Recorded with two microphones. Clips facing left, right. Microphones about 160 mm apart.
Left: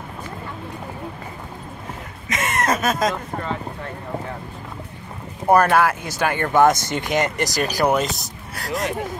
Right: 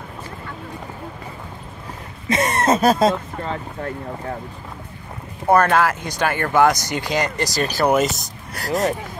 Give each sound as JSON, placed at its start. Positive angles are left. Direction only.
{"t": 2.2, "sound": "a sound", "side_deg": -30}
{"t": 5.5, "sound": "speech", "side_deg": 10}
{"t": 6.3, "sound": "speech", "side_deg": 20}
{"t": 7.8, "sound": "speech", "side_deg": 0}